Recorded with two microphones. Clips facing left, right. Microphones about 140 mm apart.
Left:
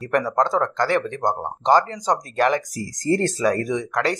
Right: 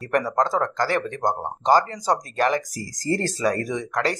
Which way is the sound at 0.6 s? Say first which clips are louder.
Left 2 dB; 35° right (ahead or behind).